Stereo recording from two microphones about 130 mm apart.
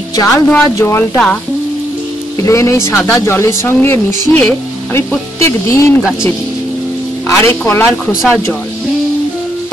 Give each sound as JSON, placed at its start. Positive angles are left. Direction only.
{"t": 0.1, "sound": "speech", "side_deg": 30}
{"t": 2.4, "sound": "speech", "side_deg": 20}
{"t": 5.4, "sound": "speech", "side_deg": 20}
{"t": 7.2, "sound": "speech", "side_deg": 20}